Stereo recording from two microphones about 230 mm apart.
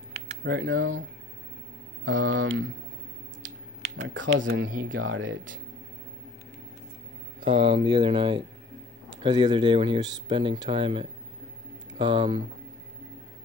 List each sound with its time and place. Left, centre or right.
0.4 s speech: right
2.0 s speech: right
4.1 s speech: right
7.3 s speech: right